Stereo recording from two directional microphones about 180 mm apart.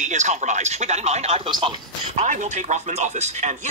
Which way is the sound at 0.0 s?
40° right (ahead or behind).